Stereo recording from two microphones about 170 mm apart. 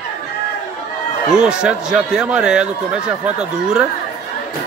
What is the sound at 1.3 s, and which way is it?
Speech, 5° right (ahead or behind).